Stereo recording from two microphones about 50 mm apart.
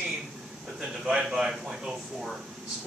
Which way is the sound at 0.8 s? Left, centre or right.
Centre.